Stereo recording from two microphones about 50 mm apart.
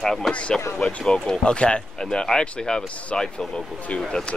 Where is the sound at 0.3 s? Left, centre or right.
Left.